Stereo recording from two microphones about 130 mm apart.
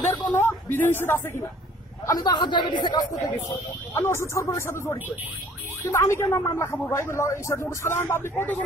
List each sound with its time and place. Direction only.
0.2 s speech: 15° left (ahead or behind)
2.0 s speech: 30° left (ahead or behind)
3.9 s a woman's voice: 20° left (ahead or behind)